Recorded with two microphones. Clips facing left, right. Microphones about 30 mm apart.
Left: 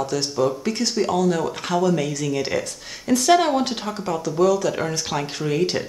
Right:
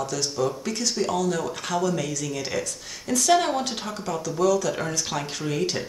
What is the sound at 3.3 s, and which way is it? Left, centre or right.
Speech, centre.